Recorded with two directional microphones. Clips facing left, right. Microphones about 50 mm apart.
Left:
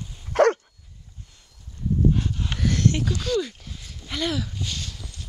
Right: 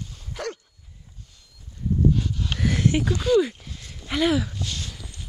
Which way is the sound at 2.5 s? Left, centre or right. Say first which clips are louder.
Right 1 dB; centre.